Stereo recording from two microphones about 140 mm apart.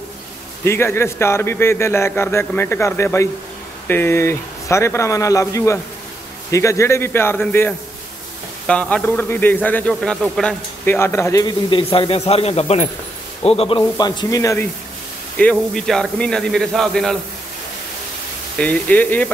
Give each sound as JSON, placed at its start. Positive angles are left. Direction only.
{"t": 0.7, "sound": "a man's voice", "side_deg": 15}
{"t": 9.9, "sound": "speech", "side_deg": 0}
{"t": 10.9, "sound": "speech", "side_deg": 15}
{"t": 11.7, "sound": "a man's voice", "side_deg": 40}
{"t": 15.4, "sound": "a man's voice", "side_deg": 10}
{"t": 18.6, "sound": "a man's voice", "side_deg": 10}